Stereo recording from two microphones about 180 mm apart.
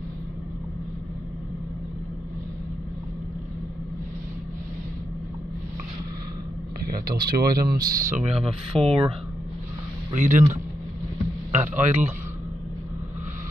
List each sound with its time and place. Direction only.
6.8 s speech: 55° right (ahead or behind); by 8.9 s 35° right (ahead or behind)
10.1 s speech: 45° right (ahead or behind)
11.5 s a man's voice: 40° right (ahead or behind)